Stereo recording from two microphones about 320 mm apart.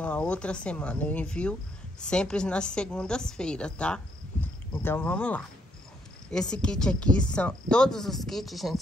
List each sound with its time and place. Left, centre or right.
0.0 s a woman's voice: centre